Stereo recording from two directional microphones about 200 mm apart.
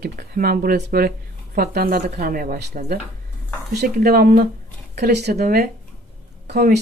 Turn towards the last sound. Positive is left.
turn(degrees=-55)  # may be behind; listen again after turning